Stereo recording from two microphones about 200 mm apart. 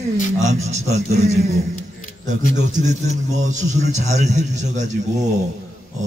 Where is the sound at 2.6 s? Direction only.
35° right (ahead or behind).